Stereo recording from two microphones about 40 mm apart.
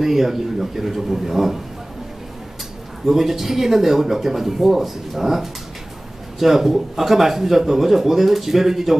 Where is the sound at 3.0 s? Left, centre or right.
Centre.